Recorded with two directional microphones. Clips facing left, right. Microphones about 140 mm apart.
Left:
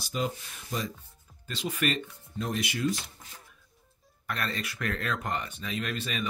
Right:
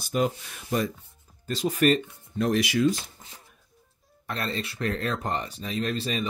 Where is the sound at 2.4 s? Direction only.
80° right.